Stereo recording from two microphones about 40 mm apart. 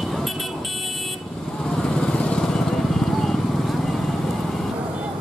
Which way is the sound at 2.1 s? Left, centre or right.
Left.